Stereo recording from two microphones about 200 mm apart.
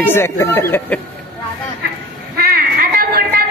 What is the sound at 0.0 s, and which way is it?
Speech, 10° left (ahead or behind).